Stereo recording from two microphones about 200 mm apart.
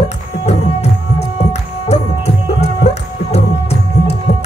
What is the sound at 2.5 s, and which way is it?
Music, 30° left (ahead or behind).